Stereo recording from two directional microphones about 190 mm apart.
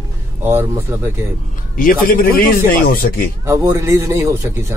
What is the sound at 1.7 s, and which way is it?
A man's voice, 50° left (ahead or behind).